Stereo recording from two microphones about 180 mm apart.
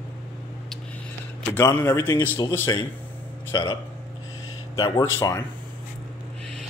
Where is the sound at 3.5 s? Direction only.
25° left (ahead or behind).